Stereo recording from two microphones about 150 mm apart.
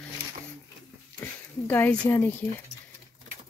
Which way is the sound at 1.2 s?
10° left (ahead or behind).